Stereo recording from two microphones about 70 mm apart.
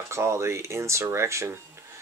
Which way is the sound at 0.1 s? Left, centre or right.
Right.